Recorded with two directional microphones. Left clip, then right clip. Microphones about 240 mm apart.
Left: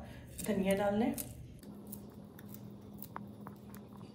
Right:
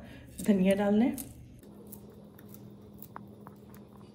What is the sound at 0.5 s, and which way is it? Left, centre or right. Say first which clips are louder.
Speech: right 5 dB; right.